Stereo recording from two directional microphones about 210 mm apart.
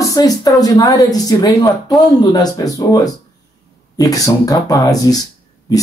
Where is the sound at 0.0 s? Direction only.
15° left (ahead or behind).